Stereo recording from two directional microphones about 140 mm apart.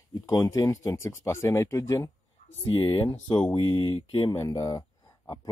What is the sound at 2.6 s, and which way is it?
Speech, 35° left (ahead or behind).